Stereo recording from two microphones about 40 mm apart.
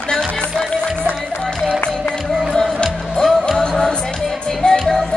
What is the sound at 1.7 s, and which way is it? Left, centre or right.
Music, left.